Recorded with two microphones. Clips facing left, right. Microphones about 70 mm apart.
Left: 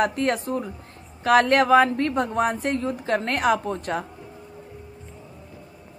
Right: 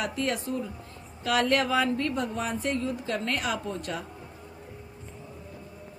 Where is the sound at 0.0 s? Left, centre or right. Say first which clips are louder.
Left 7 dB; left.